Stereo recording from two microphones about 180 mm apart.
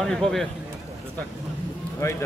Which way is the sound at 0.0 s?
5° left (ahead or behind).